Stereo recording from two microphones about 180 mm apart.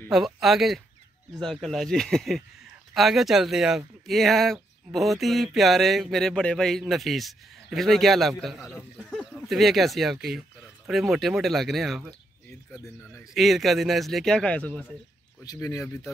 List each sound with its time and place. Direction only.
0.1 s speech: centre (ahead or behind)
13.3 s speech: centre (ahead or behind)
15.4 s speech: 20° left (ahead or behind)